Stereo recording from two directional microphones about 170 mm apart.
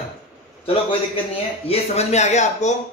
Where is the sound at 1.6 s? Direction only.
40° left (ahead or behind).